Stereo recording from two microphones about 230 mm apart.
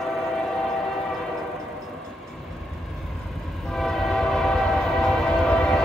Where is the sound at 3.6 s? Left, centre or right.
Centre.